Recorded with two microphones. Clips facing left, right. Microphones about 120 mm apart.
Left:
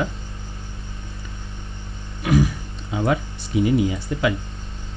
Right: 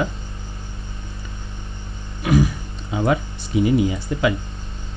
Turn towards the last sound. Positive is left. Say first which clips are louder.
# right 1 dB
turn(degrees=-15)  # may be behind; listen again after turning